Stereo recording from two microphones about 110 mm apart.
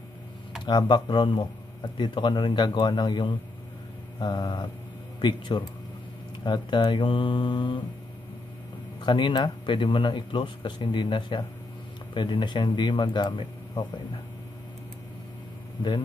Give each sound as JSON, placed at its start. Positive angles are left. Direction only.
{"t": 0.7, "sound": "speech", "side_deg": 45}
{"t": 4.2, "sound": "a sound", "side_deg": 40}
{"t": 5.5, "sound": "speech", "side_deg": 50}
{"t": 9.0, "sound": "speech", "side_deg": 45}